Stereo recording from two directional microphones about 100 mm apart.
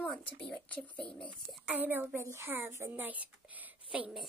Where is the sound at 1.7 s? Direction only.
20° right (ahead or behind).